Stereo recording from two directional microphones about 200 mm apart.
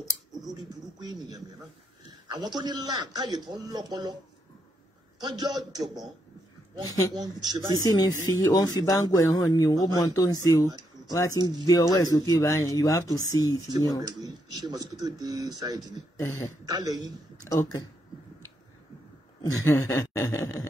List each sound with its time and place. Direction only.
0.3 s a sound: centre (ahead or behind)
0.7 s a man's voice: 20° right (ahead or behind)
5.2 s a man's voice: 20° right (ahead or behind)
6.9 s speech: 15° left (ahead or behind)
7.2 s a man's voice: 20° right (ahead or behind)
8.3 s speech: 15° left (ahead or behind)
13.7 s a man's voice: 20° right (ahead or behind)
16.2 s speech: 15° left (ahead or behind)
16.6 s a man's voice: 20° right (ahead or behind)
17.5 s speech: 15° left (ahead or behind)
19.4 s speech: 15° left (ahead or behind)